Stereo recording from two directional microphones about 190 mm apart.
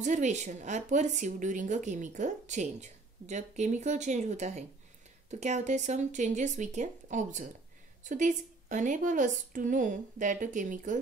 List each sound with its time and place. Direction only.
0.0 s a woman's voice: 40° right (ahead or behind)